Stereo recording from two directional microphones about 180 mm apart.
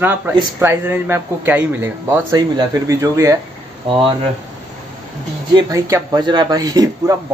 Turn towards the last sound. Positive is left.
turn(degrees=-20)  # may be behind; listen again after turning